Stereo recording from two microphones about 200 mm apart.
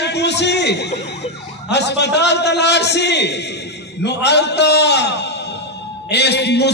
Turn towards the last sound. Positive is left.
turn(degrees=55)  # may be behind; listen again after turning